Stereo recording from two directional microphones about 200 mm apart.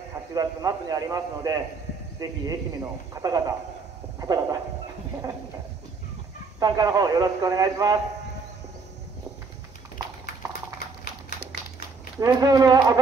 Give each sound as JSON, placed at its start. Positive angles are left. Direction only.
{"t": 0.3, "sound": "speech", "side_deg": -20}
{"t": 6.6, "sound": "speech", "side_deg": -20}
{"t": 12.2, "sound": "speech", "side_deg": -20}